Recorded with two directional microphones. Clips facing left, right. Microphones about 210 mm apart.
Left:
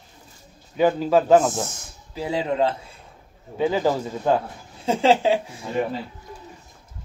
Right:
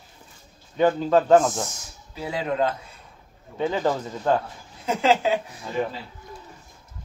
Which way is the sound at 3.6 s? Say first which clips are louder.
Left 3 dB; 10° left (ahead or behind).